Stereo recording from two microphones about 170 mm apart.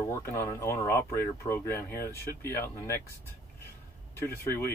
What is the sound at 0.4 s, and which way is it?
Speech, 15° left (ahead or behind).